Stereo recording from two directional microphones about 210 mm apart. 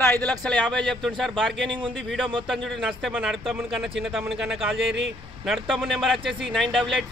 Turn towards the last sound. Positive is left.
turn(degrees=0)  # may be behind; listen again after turning